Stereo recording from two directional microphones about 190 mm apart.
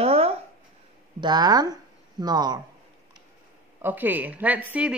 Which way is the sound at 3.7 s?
10° right (ahead or behind).